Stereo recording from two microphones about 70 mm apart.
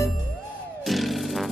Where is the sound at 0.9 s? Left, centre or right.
Centre.